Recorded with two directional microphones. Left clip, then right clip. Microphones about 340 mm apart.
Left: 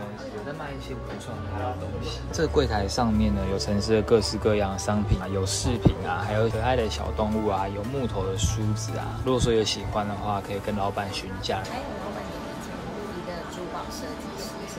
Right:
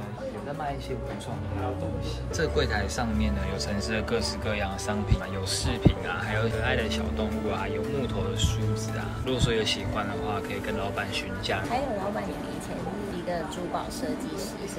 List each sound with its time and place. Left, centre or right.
2.3 s speech: centre
9.3 s speech: centre